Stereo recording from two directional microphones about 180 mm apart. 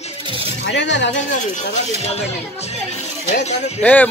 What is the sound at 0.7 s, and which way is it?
Speech, 80° left.